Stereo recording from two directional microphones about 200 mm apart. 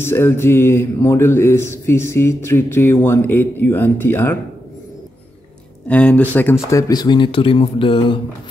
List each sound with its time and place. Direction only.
0.0 s mantra: 10° left (ahead or behind)
5.9 s speech: 5° left (ahead or behind); by 8.2 s 25° left (ahead or behind)